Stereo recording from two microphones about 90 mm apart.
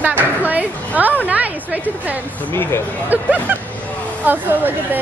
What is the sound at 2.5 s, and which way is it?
Speech, 25° left (ahead or behind).